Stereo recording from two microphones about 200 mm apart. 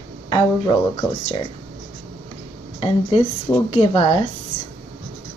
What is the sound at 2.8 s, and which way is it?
A woman's voice, 25° left (ahead or behind).